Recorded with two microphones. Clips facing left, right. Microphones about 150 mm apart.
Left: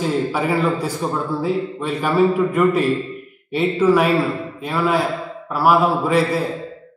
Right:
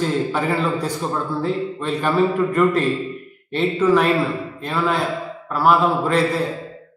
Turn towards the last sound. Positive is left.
turn(degrees=10)  # may be behind; listen again after turning